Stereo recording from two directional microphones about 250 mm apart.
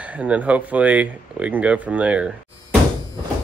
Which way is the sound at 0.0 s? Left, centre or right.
Centre.